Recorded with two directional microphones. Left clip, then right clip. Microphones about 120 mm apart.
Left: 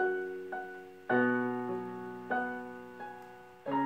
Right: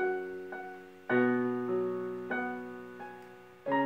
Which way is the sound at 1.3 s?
5° right (ahead or behind).